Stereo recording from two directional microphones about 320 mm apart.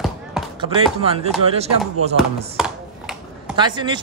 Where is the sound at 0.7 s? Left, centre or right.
Centre.